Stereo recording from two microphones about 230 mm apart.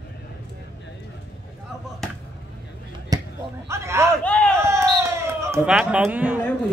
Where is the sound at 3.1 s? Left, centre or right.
Centre.